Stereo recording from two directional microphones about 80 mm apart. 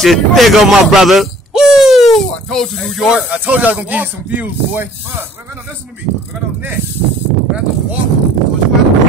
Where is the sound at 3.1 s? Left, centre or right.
Centre.